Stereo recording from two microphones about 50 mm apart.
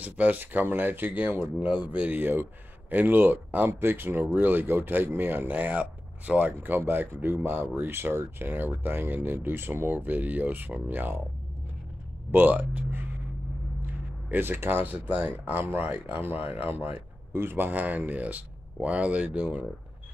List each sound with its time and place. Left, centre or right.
0.0 s speech: right
12.3 s speech: right
14.3 s speech: right
14.9 s speech: right